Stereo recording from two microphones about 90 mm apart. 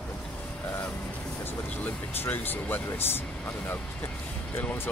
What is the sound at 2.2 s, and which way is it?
Speech, 20° left (ahead or behind).